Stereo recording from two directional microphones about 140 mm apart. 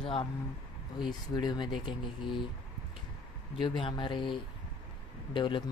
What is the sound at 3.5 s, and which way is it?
Speech, 40° left (ahead or behind).